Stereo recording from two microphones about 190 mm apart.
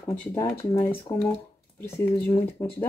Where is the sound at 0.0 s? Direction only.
10° left (ahead or behind).